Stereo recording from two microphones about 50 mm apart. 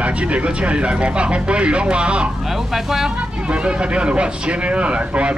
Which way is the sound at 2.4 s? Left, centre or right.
Centre.